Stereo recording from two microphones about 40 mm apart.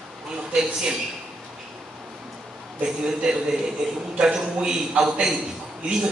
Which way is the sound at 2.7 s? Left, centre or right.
Centre.